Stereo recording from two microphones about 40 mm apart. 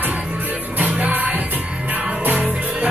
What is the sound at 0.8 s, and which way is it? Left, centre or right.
Music, right.